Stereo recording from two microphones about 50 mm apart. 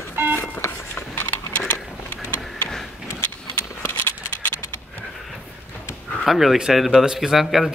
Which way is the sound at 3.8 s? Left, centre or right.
Left.